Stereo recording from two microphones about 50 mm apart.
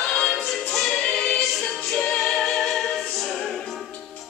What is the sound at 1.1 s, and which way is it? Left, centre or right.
Choir, centre.